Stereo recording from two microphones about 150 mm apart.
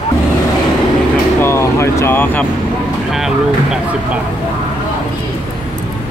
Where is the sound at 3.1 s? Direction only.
Centre (ahead or behind).